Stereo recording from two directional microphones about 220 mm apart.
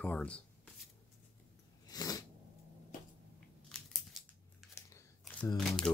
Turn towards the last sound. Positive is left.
turn(degrees=0)  # may be behind; listen again after turning